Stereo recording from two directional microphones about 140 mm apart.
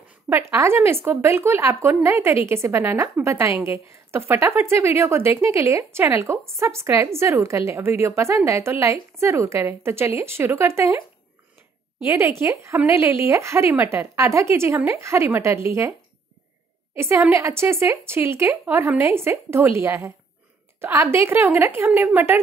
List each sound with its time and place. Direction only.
0.3 s speech: 20° right (ahead or behind)
12.0 s speech: 20° right (ahead or behind)
17.0 s speech: 20° right (ahead or behind)